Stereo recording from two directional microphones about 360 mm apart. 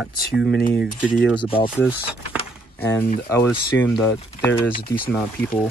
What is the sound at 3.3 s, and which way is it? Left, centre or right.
Speech, centre.